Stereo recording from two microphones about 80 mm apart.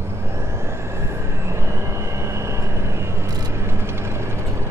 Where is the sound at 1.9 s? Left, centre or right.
Right.